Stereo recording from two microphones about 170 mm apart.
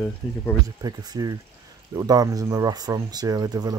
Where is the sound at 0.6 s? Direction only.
20° right (ahead or behind).